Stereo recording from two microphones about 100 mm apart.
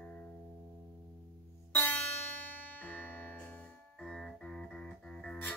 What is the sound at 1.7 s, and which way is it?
Music, 15° left (ahead or behind).